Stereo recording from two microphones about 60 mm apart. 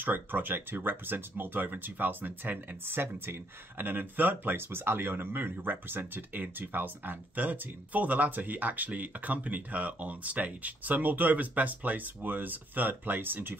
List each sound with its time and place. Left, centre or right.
0.0 s speech: right